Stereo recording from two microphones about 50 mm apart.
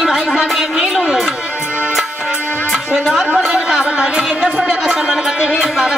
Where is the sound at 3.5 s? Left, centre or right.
Centre.